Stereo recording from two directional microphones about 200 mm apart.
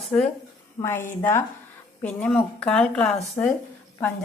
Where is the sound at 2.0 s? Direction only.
5° left (ahead or behind).